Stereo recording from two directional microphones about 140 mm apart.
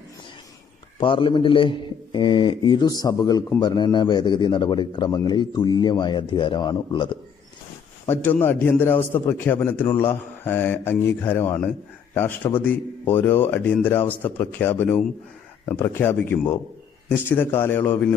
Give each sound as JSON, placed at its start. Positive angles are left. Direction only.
{"t": 0.9, "sound": "a man's voice", "side_deg": 40}
{"t": 8.1, "sound": "speech", "side_deg": 15}